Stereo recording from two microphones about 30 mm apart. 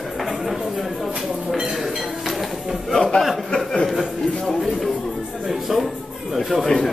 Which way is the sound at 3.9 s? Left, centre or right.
Centre.